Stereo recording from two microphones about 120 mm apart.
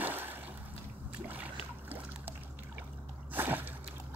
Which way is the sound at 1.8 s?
15° right (ahead or behind).